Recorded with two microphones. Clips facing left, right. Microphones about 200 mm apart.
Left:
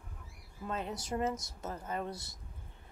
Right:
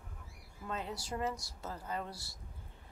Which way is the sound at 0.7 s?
20° left (ahead or behind).